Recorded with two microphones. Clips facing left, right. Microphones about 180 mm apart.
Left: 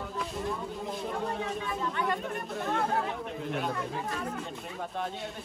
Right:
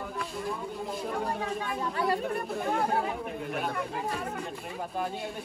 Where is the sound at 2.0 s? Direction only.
35° right (ahead or behind).